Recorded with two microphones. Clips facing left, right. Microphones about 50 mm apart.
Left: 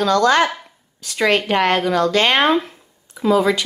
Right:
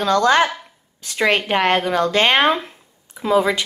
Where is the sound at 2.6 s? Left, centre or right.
Centre.